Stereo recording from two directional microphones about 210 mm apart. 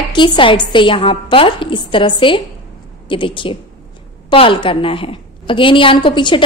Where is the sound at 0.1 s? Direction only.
20° left (ahead or behind).